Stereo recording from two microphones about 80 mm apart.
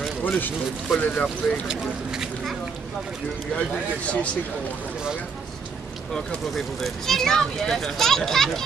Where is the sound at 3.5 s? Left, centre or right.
Centre.